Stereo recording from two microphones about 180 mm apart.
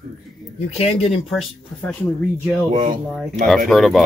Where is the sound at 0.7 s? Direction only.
35° left (ahead or behind).